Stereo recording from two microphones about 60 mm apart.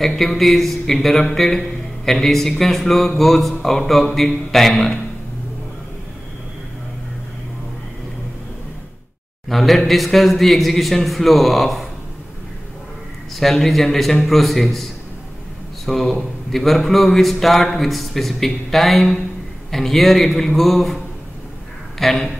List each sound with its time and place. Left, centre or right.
0.0 s speech: centre
9.5 s speech: centre
13.4 s speech: centre
21.9 s a sound: centre